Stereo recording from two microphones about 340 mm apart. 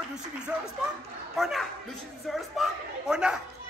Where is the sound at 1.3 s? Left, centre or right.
Centre.